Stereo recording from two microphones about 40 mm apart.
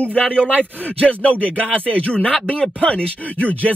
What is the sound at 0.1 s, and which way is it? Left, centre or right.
Speech, left.